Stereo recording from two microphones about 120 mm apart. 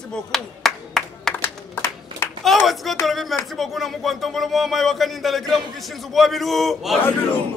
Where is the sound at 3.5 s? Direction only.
Centre (ahead or behind).